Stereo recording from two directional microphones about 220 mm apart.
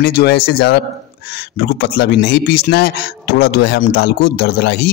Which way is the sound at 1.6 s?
45° left (ahead or behind).